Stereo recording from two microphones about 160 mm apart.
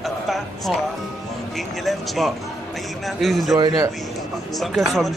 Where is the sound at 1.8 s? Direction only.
Centre (ahead or behind).